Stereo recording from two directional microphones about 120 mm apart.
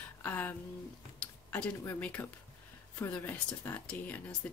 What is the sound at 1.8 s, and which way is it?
Speech, 15° left (ahead or behind).